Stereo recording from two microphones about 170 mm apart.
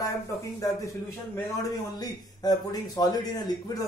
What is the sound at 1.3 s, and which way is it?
Speech, 20° left (ahead or behind).